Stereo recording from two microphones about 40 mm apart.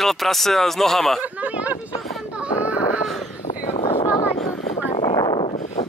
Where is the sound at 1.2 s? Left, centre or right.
Right.